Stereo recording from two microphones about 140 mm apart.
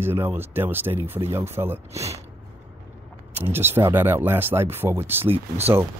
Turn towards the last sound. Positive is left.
turn(degrees=-45)  # may be behind; listen again after turning